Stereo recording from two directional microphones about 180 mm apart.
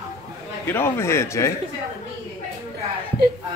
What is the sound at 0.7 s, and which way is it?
Speech, 15° left (ahead or behind).